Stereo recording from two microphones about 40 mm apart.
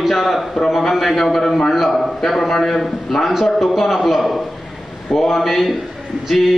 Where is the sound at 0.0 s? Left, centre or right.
Centre.